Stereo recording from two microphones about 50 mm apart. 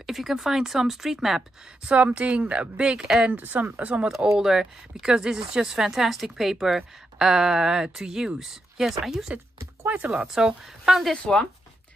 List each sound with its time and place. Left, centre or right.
0.0 s speech: centre
1.9 s a woman's voice: right
2.8 s speech: centre
3.3 s speech: right
4.4 s speech: centre
11.3 s speech: centre